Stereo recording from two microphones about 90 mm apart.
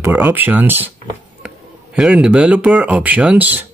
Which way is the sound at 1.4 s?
15° right (ahead or behind).